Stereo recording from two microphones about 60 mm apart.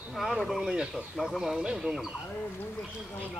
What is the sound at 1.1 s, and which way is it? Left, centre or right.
Speech, centre.